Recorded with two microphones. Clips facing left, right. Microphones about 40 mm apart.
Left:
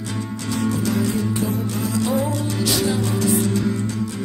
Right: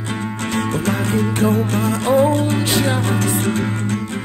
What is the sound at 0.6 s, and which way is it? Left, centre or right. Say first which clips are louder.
Music: right 1 dB; right.